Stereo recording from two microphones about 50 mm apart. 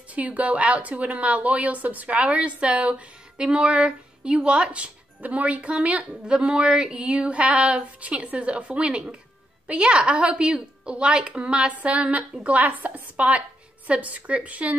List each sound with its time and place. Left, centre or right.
0.1 s a woman's voice: right